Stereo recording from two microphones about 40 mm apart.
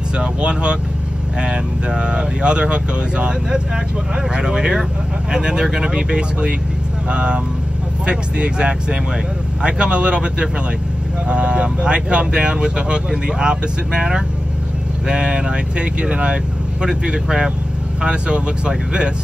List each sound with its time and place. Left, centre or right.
0.2 s speech: right